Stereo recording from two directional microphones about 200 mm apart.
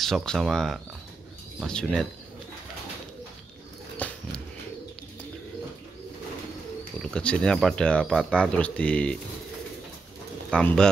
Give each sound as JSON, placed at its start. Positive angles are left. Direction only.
{"t": 0.0, "sound": "speech", "side_deg": 0}
{"t": 4.0, "sound": "dog", "side_deg": 5}
{"t": 7.0, "sound": "speech", "side_deg": 5}
{"t": 10.5, "sound": "speech", "side_deg": 5}